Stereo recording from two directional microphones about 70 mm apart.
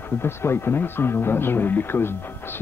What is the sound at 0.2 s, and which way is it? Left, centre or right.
Speech, left.